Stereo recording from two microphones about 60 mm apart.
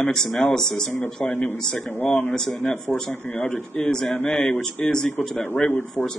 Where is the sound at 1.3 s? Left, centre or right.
Left.